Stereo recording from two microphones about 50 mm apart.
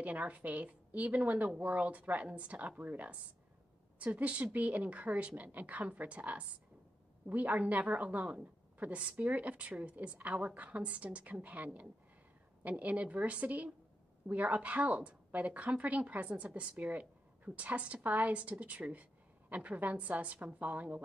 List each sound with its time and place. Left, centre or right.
0.0 s a woman's voice: right